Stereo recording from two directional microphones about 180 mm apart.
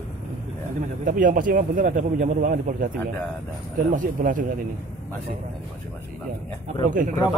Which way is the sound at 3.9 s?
45° right (ahead or behind).